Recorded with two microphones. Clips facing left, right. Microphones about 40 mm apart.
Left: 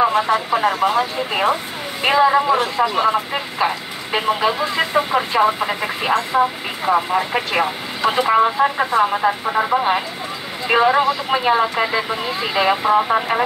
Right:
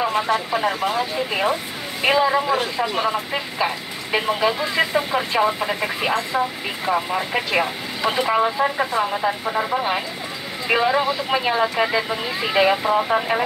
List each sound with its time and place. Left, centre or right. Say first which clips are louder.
0.0 s speech: left 4 dB; centre
11.2 s speech: left 3 dB; centre